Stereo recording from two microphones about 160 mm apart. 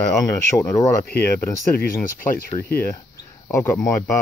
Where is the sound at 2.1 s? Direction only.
60° left (ahead or behind).